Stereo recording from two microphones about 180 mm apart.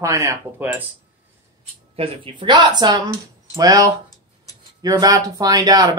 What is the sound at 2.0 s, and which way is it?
Speech, 25° right (ahead or behind).